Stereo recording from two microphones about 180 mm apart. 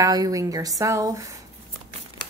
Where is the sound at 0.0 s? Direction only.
20° right (ahead or behind).